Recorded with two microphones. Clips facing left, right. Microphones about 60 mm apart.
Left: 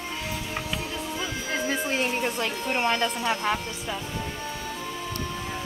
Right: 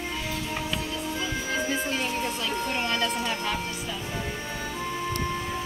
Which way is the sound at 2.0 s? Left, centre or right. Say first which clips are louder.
Left 3 dB; left.